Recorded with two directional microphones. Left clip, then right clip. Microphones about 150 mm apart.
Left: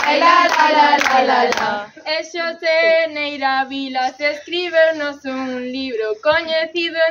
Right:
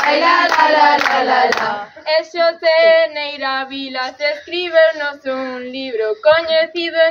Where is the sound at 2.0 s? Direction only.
15° left (ahead or behind).